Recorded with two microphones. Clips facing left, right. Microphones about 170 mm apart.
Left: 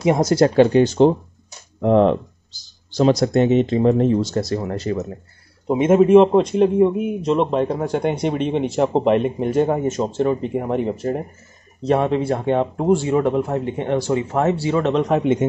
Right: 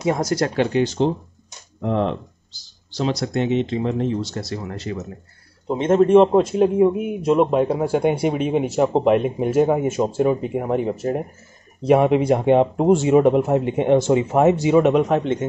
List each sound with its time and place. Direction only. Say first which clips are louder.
0.0 s speech: left 5 dB; 20° left (ahead or behind)
0.7 s speech: left 5 dB; 50° left (ahead or behind)
5.7 s a man's voice: left 2 dB; 10° left (ahead or behind); by 15.0 s 15° right (ahead or behind)